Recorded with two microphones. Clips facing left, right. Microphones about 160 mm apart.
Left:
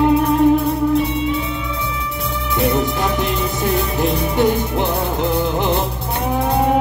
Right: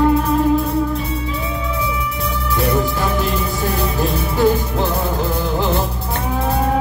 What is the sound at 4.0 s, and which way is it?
Music, 20° left (ahead or behind).